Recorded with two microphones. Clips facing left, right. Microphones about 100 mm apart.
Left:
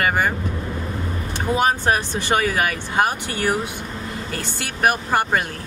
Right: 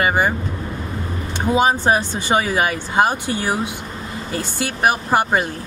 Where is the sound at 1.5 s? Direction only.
15° right (ahead or behind).